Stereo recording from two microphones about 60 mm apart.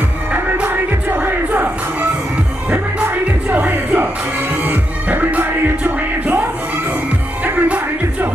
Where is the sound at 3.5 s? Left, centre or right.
Right.